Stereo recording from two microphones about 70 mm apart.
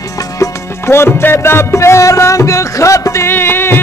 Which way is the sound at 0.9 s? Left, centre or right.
Left.